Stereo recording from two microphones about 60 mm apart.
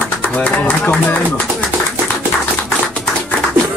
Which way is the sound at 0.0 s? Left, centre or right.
Left.